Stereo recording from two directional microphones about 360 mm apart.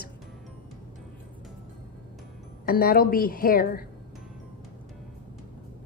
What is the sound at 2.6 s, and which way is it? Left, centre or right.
A woman's voice, left.